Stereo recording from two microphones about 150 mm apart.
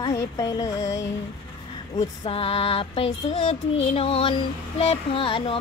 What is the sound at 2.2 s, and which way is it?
Music, 40° left (ahead or behind).